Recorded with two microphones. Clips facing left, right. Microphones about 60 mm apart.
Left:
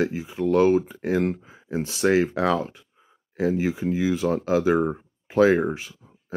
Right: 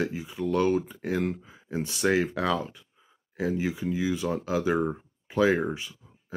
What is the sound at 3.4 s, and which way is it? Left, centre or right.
Speech, left.